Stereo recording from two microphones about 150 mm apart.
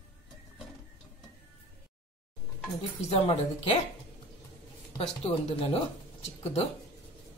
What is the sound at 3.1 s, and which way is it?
Speech, 40° left (ahead or behind).